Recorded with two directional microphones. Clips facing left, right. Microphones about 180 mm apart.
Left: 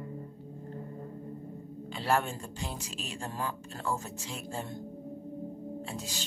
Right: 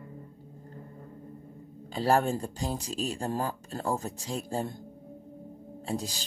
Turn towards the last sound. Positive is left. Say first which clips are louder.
# right 6 dB
turn(degrees=-35)  # may be behind; listen again after turning